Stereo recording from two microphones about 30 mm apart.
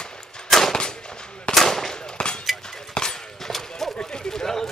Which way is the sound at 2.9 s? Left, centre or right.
Centre.